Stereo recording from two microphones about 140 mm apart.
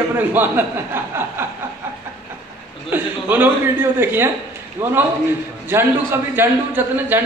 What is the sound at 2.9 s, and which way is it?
A man's voice, 15° right (ahead or behind).